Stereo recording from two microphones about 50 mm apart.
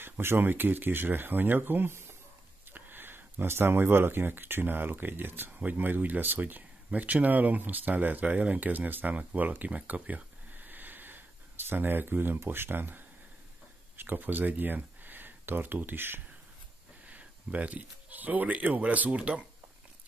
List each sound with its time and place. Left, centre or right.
0.0 s speech: right
9.9 s a sound: right
12.4 s speech: right
17.0 s speech: right